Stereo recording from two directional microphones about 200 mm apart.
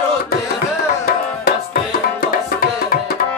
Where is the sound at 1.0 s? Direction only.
50° left (ahead or behind).